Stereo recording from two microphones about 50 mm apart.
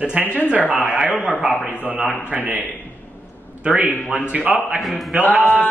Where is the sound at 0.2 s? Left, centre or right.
Left.